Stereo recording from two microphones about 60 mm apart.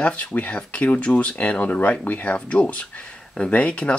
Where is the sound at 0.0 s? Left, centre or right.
Left.